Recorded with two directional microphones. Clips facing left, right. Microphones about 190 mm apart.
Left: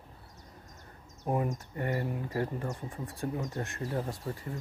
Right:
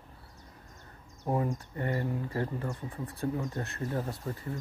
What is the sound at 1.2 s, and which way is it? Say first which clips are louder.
Speech: right 1 dB; 15° left (ahead or behind).